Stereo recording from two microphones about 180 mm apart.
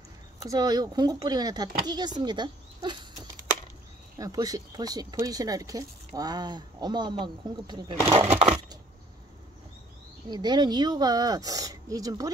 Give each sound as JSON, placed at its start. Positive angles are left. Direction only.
{"t": 0.4, "sound": "speech", "side_deg": -20}
{"t": 4.2, "sound": "speech", "side_deg": -20}
{"t": 8.3, "sound": "crushing", "side_deg": -35}
{"t": 10.3, "sound": "speech", "side_deg": -25}